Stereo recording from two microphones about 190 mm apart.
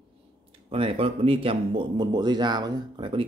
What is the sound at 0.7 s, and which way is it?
Speech, 30° right (ahead or behind).